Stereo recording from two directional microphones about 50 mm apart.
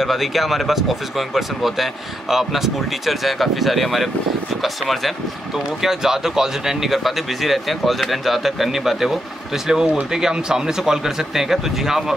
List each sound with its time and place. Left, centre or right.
0.0 s speech: centre